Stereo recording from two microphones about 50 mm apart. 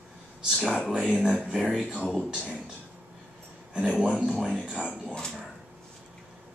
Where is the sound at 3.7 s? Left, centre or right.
Centre.